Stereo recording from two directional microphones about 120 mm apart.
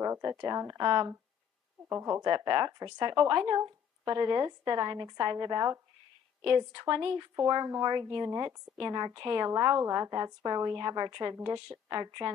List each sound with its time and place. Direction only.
0.0 s speech: 30° right (ahead or behind)
1.9 s speech: 15° right (ahead or behind)
2.1 s speech: 35° right (ahead or behind)
11.3 s a woman's voice: 25° right (ahead or behind)